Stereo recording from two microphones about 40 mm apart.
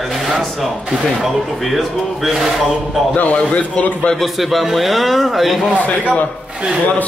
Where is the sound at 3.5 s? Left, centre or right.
Left.